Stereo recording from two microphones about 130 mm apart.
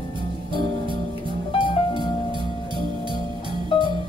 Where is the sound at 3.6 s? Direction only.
45° left (ahead or behind).